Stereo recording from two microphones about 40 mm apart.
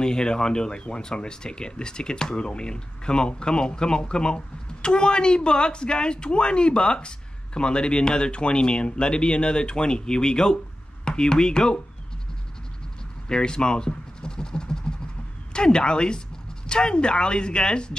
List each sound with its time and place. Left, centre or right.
0.0 s speech: centre
13.3 s a sound: left
15.5 s speech: left